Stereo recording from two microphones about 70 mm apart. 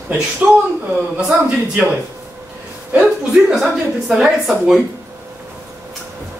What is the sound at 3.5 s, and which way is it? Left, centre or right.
A woman's voice, centre.